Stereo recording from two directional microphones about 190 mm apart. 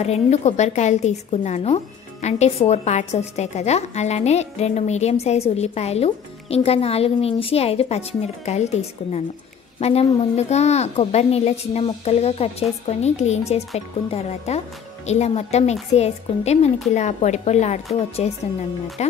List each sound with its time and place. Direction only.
0.0 s speech: 35° left (ahead or behind)